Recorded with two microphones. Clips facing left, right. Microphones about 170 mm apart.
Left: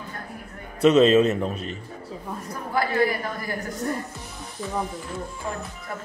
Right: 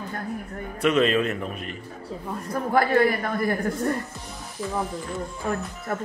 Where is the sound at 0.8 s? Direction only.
25° left (ahead or behind).